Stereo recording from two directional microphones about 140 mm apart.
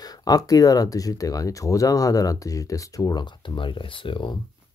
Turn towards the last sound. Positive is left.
turn(degrees=35)  # may be behind; listen again after turning